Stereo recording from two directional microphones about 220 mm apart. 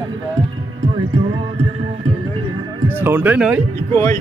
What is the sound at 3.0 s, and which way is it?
Speech, 10° right (ahead or behind).